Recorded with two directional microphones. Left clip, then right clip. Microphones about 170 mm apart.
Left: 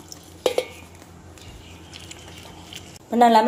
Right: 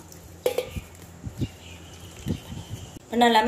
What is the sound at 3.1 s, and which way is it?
Speech, 35° left (ahead or behind).